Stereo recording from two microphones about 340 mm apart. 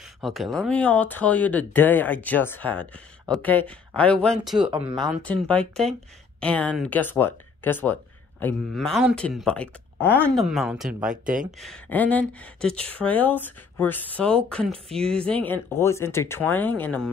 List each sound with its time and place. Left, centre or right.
0.2 s speech: centre
5.5 s speech: centre
11.2 s speech: right
11.6 s speech: centre